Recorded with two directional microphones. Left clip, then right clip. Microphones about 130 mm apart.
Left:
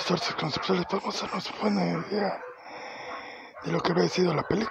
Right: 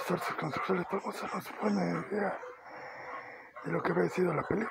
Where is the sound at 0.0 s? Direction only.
60° left (ahead or behind).